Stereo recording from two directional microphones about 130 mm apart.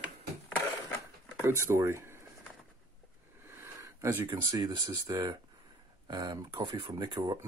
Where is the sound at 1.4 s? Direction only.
20° right (ahead or behind).